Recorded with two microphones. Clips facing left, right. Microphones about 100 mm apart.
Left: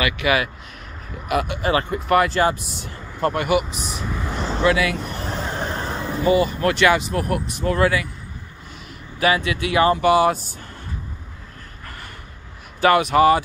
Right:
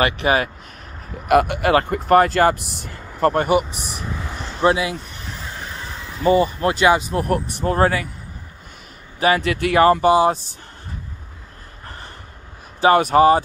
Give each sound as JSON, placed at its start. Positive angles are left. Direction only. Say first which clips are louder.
{"t": 0.0, "sound": "speech", "louder": "right 2 dB", "side_deg": -40}
{"t": 1.3, "sound": "speech", "louder": "right 5 dB", "side_deg": -55}
{"t": 2.0, "sound": "speech", "louder": "right 3 dB", "side_deg": -40}
{"t": 4.6, "sound": "speech", "louder": "right 2 dB", "side_deg": -25}
{"t": 5.0, "sound": "neigh", "louder": "left 7 dB", "side_deg": 60}
{"t": 6.2, "sound": "speech", "louder": "right 2 dB", "side_deg": -35}
{"t": 6.6, "sound": "speech", "louder": "right 1 dB", "side_deg": -25}
{"t": 7.1, "sound": "speech", "louder": "right 2 dB", "side_deg": -40}
{"t": 9.2, "sound": "speech", "louder": "right 2 dB", "side_deg": -45}
{"t": 10.0, "sound": "speech", "louder": "right 1 dB", "side_deg": -30}
{"t": 12.9, "sound": "speech", "louder": "right 2 dB", "side_deg": -35}